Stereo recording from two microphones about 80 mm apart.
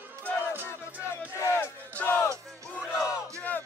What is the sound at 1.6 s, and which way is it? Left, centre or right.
Battle cry, left.